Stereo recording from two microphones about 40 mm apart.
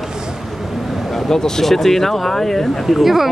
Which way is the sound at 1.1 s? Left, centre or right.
Centre.